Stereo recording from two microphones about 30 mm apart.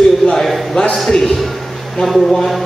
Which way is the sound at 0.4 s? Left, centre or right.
Centre.